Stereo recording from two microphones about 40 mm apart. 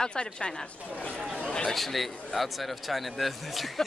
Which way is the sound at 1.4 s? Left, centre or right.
Left.